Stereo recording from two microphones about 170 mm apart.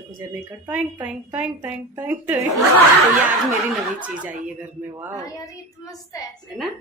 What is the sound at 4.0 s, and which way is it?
Speech, 10° right (ahead or behind).